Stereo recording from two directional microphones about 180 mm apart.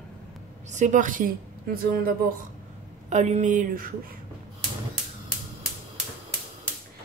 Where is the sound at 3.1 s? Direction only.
40° right (ahead or behind).